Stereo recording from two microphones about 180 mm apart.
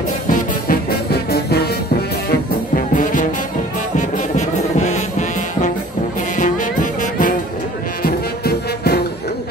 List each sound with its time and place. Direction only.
0.3 s music: 55° left (ahead or behind)
2.7 s music: 50° left (ahead or behind)
6.3 s music: 45° left (ahead or behind)
8.0 s music: 60° left (ahead or behind)